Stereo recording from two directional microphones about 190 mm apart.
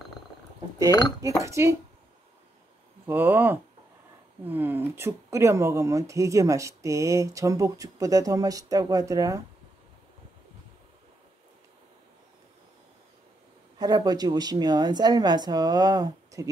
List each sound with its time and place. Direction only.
1.4 s speech: 15° right (ahead or behind)
3.1 s speech: 10° right (ahead or behind)
13.7 s speech: 20° right (ahead or behind)